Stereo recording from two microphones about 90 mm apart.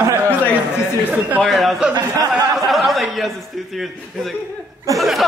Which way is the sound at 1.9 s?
40° right (ahead or behind).